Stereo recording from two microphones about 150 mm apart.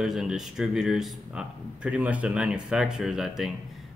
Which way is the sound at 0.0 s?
5° right (ahead or behind).